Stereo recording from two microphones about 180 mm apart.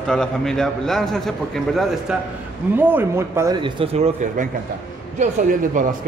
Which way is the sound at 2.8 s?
10° right (ahead or behind).